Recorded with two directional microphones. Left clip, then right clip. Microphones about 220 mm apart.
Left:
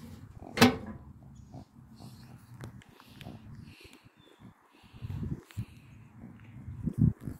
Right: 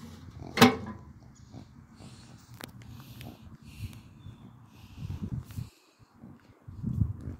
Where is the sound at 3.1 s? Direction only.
30° right (ahead or behind).